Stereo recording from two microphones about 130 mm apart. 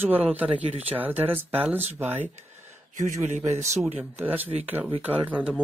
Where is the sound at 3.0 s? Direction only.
65° right (ahead or behind).